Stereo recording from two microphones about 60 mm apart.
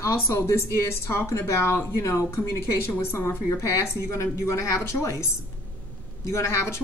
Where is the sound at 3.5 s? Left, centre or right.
Left.